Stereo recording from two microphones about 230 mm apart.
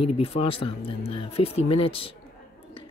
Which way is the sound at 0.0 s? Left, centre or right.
Left.